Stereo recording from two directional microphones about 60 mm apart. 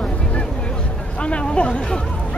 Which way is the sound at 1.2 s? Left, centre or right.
Centre.